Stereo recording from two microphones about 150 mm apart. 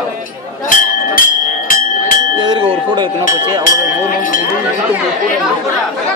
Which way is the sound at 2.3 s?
30° right (ahead or behind).